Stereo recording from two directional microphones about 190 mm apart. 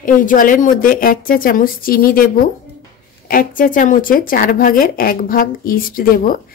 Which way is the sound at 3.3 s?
45° left (ahead or behind).